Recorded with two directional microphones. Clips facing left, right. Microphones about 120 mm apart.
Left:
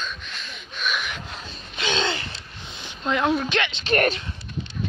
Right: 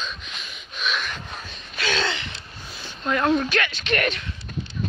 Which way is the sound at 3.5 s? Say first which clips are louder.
Even; 20° left (ahead or behind).